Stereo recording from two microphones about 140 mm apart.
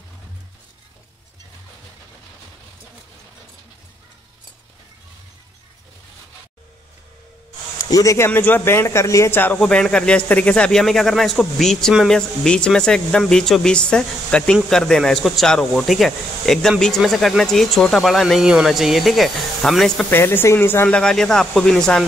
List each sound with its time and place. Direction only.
7.9 s speech: 25° left (ahead or behind); by 20.1 s centre (ahead or behind)
20.1 s speech: 15° left (ahead or behind)